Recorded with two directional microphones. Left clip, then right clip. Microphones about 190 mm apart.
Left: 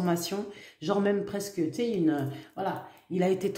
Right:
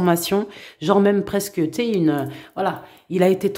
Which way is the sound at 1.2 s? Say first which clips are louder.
Right 9 dB; 50° right (ahead or behind).